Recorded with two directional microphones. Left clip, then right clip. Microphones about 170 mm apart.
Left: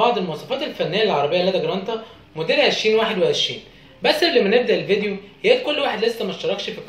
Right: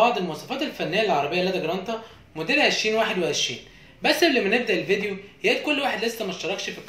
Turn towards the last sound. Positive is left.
turn(degrees=-50)  # may be behind; listen again after turning